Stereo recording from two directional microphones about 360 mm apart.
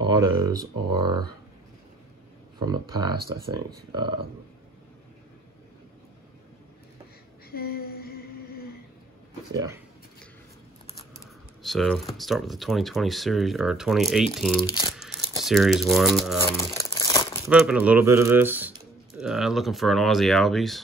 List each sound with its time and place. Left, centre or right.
0.0 s speech: centre
2.6 s speech: centre
7.5 s humming: left
9.5 s speech: centre
11.6 s speech: centre
14.9 s crumpling: centre
15.4 s speech: centre
17.5 s speech: centre